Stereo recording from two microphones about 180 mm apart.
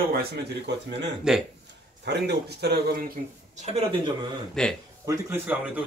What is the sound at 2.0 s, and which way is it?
Speech, 65° right (ahead or behind).